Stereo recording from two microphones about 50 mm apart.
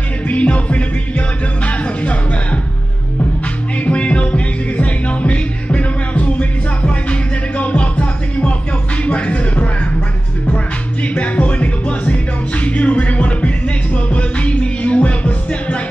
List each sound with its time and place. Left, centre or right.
0.3 s music: left
3.8 s music: left
11.1 s music: left